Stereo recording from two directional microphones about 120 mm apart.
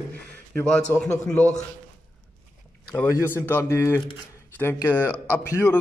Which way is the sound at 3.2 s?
20° left (ahead or behind).